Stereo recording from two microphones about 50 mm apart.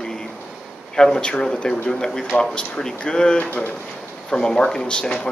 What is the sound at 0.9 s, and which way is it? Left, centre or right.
Speech, centre.